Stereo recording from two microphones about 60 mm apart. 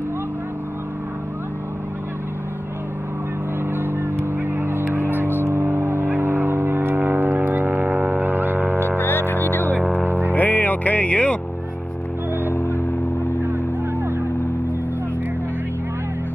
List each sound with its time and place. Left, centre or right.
4.6 s vehicle: right
8.7 s a sound: left
10.0 s music: right
10.3 s music: left